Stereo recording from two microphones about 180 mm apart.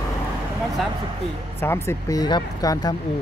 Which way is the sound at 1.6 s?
15° left (ahead or behind).